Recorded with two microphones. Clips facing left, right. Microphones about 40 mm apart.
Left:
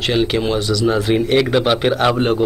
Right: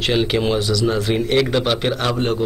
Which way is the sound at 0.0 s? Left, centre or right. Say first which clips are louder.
Left 1 dB; centre.